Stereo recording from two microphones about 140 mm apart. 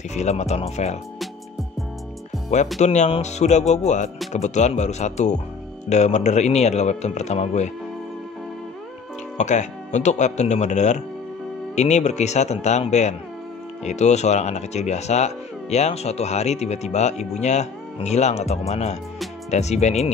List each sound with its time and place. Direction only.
0.1 s speech: 55° left (ahead or behind)
2.8 s speech: 55° left (ahead or behind)
9.4 s speech: 60° left (ahead or behind)